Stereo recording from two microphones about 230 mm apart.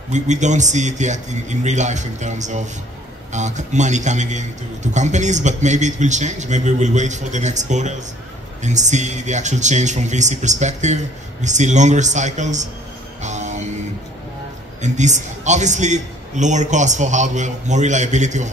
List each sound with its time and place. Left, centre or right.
0.1 s a man's voice: right
13.2 s music: right
14.8 s a man's voice: right